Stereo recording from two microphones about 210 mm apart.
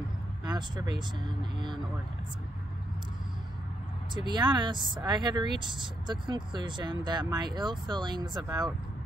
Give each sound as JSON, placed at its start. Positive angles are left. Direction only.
{"t": 0.5, "sound": "speech", "side_deg": -20}
{"t": 4.1, "sound": "speech", "side_deg": -20}